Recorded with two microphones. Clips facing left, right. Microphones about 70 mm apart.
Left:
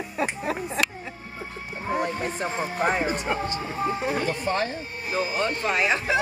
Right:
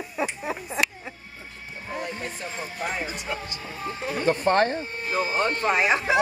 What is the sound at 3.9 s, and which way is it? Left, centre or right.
Speech, centre.